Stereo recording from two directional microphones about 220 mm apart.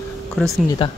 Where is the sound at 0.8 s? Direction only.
25° left (ahead or behind).